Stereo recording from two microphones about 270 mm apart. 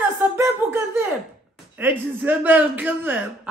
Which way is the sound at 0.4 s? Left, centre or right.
Centre.